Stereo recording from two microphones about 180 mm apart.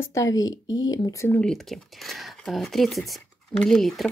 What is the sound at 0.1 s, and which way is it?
Speech, 20° left (ahead or behind).